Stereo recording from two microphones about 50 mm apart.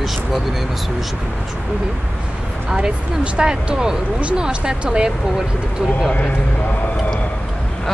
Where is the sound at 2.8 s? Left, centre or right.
Centre.